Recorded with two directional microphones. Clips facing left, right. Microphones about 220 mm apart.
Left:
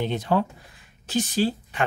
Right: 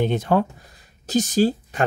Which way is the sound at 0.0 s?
50° right (ahead or behind).